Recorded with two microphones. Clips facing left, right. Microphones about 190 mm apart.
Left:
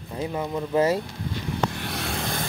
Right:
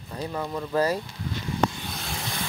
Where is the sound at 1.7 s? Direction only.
70° left (ahead or behind).